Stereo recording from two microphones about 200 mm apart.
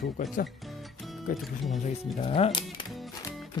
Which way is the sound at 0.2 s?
40° left (ahead or behind).